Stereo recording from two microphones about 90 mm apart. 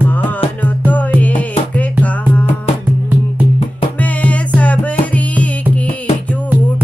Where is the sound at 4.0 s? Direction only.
15° left (ahead or behind).